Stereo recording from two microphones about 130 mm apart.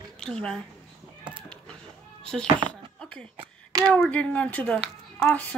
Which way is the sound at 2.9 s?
10° left (ahead or behind).